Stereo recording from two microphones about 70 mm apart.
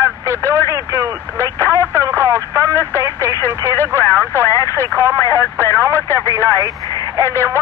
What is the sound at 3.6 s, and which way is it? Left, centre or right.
Speech, left.